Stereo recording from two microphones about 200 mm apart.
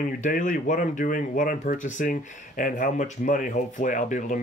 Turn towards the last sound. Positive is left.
turn(degrees=40)  # may be behind; listen again after turning